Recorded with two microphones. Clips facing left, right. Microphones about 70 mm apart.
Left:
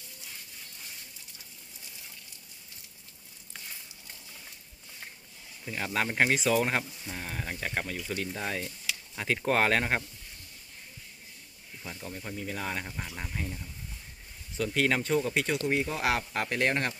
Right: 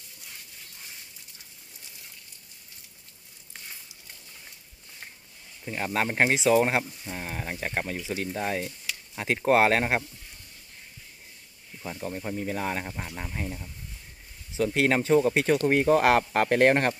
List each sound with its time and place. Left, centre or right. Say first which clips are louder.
5.7 s speech: right 3 dB; right
11.8 s speech: right 7 dB; right
13.0 s speech: right 2 dB; centre
13.4 s speech: right 3 dB; right